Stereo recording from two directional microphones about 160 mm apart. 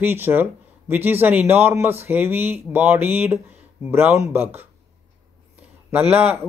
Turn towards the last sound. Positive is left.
turn(degrees=-40)  # may be behind; listen again after turning